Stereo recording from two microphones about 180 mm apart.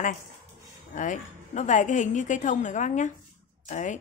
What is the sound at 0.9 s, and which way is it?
A woman's voice, 45° left (ahead or behind).